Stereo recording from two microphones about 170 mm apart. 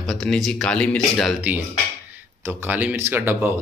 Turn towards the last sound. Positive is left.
turn(degrees=-10)  # may be behind; listen again after turning